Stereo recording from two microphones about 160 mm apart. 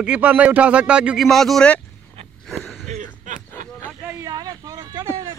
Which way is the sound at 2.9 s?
50° right (ahead or behind).